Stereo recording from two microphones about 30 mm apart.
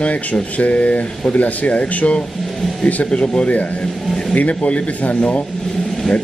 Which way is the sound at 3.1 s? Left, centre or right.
Left.